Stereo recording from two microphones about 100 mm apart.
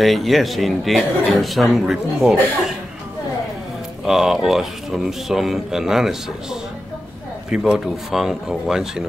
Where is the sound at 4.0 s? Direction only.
Centre (ahead or behind).